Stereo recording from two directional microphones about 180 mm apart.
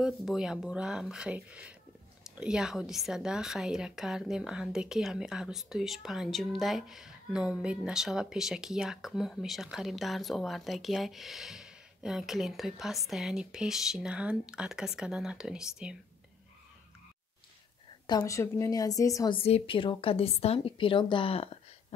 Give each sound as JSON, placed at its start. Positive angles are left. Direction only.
{"t": 0.0, "sound": "a woman's voice", "side_deg": 0}
{"t": 18.0, "sound": "a woman's voice", "side_deg": 20}
{"t": 19.3, "sound": "speech", "side_deg": 30}